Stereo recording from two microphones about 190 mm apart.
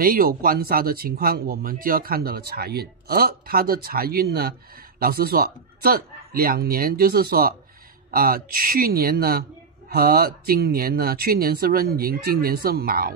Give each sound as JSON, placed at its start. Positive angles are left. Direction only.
{"t": 0.0, "sound": "speech", "side_deg": -50}